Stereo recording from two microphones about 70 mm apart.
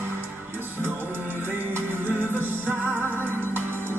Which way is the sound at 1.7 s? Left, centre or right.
Right.